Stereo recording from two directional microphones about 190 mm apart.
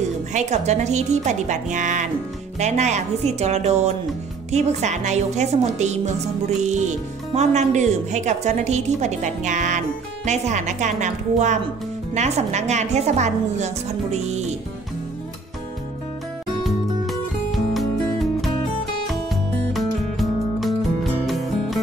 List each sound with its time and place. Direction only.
0.3 s speech: 35° right (ahead or behind)
16.6 s music: centre (ahead or behind)
19.7 s music: centre (ahead or behind)